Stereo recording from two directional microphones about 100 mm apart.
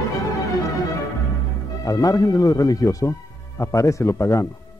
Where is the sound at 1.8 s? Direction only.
35° left (ahead or behind).